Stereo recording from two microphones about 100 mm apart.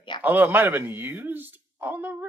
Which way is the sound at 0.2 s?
15° right (ahead or behind).